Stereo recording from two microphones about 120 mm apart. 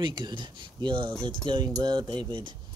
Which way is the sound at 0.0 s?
40° right (ahead or behind).